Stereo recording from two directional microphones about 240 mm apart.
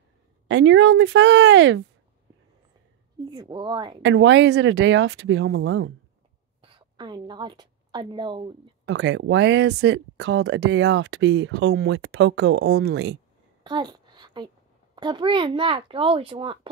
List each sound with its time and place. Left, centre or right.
0.5 s speech: right
3.3 s a child's voice: centre
4.0 s speech: right
6.6 s a woman's voice: centre
8.8 s speech: right
13.7 s a sound: centre
15.0 s a child's voice: centre